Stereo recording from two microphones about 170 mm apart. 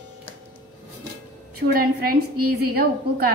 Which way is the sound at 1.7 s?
60° right (ahead or behind).